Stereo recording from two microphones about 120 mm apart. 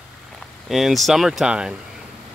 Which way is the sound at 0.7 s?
Centre (ahead or behind).